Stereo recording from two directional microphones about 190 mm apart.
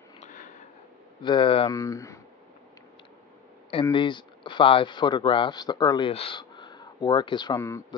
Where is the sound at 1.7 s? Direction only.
15° left (ahead or behind).